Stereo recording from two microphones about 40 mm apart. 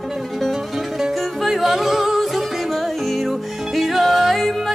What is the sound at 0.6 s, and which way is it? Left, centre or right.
Music, centre.